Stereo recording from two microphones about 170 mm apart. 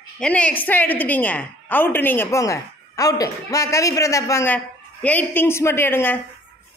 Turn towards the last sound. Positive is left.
turn(degrees=15)  # may be behind; listen again after turning